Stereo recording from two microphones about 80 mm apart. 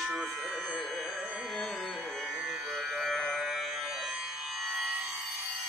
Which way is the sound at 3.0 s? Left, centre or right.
Centre.